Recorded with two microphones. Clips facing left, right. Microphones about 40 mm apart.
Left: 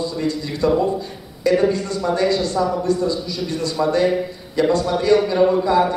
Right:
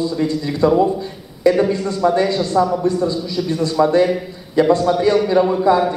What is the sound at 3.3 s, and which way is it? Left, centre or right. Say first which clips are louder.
A man's voice: right 4 dB; right.